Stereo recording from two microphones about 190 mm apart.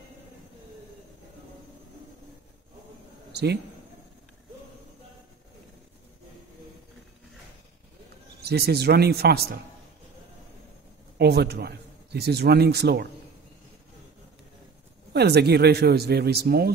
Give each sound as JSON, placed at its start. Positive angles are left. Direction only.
{"t": 8.4, "sound": "a man's voice", "side_deg": -55}
{"t": 11.1, "sound": "a man's voice", "side_deg": -60}
{"t": 15.1, "sound": "a man's voice", "side_deg": -55}